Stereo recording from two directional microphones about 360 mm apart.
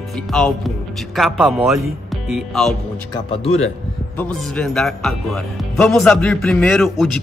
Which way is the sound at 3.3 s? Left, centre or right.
Centre.